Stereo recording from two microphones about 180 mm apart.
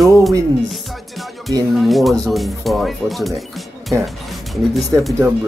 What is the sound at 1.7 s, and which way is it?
Speech, centre (ahead or behind).